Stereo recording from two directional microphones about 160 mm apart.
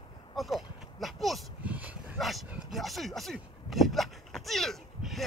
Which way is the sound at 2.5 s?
5° right (ahead or behind).